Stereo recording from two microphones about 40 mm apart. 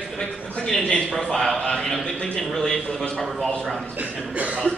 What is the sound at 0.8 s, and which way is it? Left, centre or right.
A man's voice, left.